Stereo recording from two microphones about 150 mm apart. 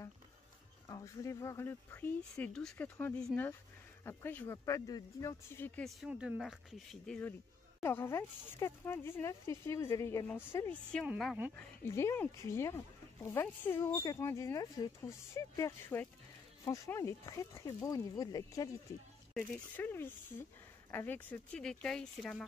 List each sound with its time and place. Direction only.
0.8 s speech: 20° left (ahead or behind)
5.8 s speech: centre (ahead or behind)
7.8 s speech: 15° left (ahead or behind)
19.3 s speech: 10° left (ahead or behind)